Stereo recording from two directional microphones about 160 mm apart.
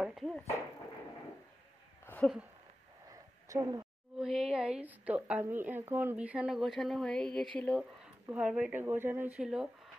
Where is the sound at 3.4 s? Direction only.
20° right (ahead or behind).